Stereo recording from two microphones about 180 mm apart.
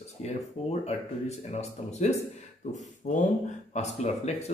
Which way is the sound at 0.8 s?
35° left (ahead or behind).